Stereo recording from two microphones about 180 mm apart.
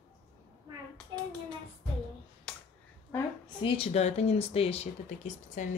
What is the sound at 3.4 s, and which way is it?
Speech, 30° left (ahead or behind).